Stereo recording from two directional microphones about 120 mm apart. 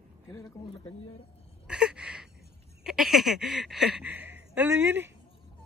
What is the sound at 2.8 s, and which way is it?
Speech, 5° right (ahead or behind).